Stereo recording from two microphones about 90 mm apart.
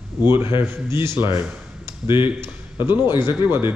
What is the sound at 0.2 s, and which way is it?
Speech, 25° right (ahead or behind).